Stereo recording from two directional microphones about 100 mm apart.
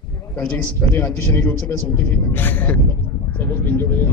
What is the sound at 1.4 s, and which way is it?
A man's voice, 15° left (ahead or behind).